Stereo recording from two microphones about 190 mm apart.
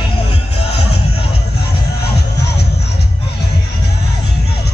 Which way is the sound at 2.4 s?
60° left (ahead or behind).